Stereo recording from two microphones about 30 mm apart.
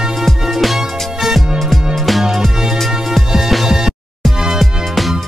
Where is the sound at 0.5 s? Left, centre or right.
Centre.